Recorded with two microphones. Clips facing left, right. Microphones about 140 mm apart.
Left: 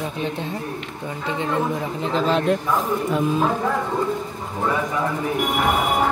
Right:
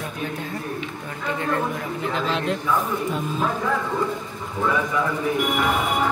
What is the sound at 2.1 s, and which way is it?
Speech, 45° left (ahead or behind).